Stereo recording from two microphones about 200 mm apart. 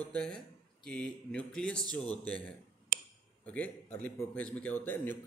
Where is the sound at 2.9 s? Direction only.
45° right (ahead or behind).